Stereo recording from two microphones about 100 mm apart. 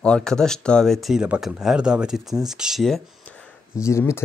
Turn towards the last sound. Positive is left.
turn(degrees=30)  # may be behind; listen again after turning